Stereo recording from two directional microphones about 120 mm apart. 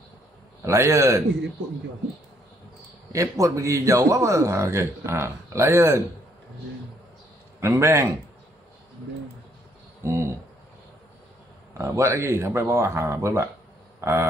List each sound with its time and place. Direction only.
0.6 s a man's voice: 25° right (ahead or behind)
3.1 s a man's voice: 25° right (ahead or behind)
7.6 s a man's voice: 20° right (ahead or behind)
10.0 s speech: 20° right (ahead or behind)
11.8 s a man's voice: 25° right (ahead or behind)